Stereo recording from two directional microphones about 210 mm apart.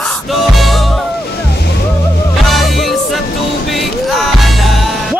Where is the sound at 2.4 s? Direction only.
Centre (ahead or behind).